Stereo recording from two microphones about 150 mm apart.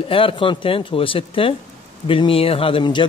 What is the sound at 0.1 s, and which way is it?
Speech, 35° left (ahead or behind).